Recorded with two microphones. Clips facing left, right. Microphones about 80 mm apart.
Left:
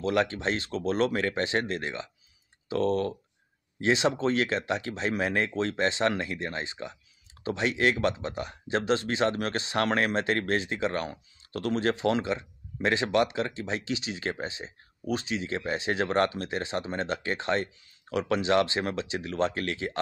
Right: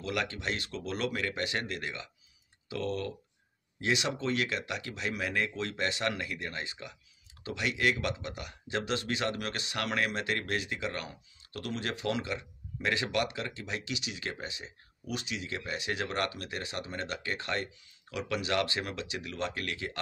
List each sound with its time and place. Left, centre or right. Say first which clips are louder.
0.0 s speech: left 8 dB; left